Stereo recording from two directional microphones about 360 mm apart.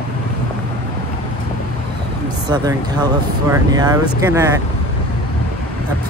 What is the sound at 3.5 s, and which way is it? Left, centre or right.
Speech, centre.